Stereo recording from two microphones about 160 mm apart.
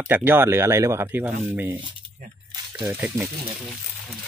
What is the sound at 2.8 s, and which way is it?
Speech, 15° right (ahead or behind).